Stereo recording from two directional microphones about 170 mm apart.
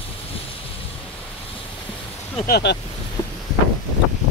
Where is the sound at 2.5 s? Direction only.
90° left.